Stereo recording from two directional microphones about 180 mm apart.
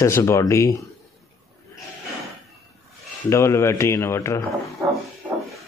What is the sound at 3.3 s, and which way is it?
Speech, 15° left (ahead or behind).